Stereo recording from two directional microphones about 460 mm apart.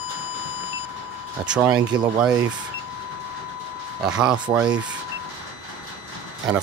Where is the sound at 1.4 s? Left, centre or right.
Centre.